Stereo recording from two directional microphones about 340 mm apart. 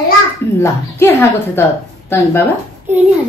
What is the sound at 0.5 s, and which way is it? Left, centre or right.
A woman's voice, centre.